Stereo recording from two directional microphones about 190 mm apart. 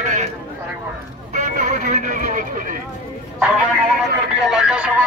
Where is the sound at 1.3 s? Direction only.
40° right (ahead or behind).